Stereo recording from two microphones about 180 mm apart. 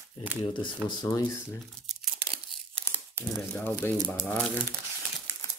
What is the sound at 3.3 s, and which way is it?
Speech, 10° left (ahead or behind).